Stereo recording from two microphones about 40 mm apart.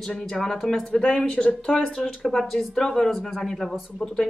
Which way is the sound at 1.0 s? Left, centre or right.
Left.